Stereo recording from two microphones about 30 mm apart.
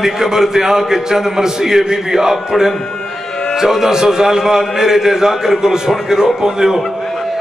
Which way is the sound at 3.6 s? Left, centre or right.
Centre.